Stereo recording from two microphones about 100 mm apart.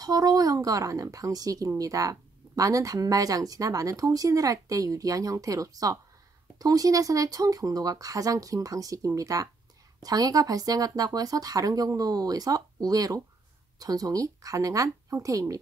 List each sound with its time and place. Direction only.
0.0 s speech: 40° right (ahead or behind)